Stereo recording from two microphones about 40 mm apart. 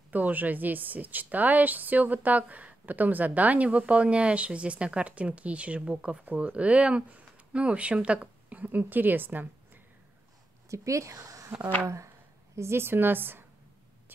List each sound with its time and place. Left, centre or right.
0.1 s a woman's voice: right
8.5 s a woman's voice: right
12.6 s a woman's voice: right